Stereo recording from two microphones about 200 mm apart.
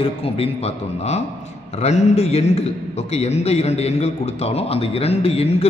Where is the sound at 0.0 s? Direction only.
30° left (ahead or behind).